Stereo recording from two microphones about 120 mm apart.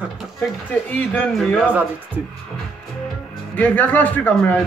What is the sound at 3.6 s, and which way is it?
Speech, 15° left (ahead or behind).